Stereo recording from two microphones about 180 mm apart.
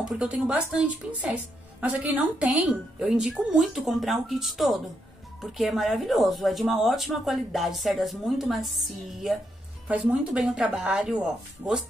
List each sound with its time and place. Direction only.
0.0 s a woman's voice: 5° right (ahead or behind)